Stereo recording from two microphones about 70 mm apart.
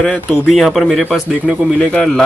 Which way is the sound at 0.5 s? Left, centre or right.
Centre.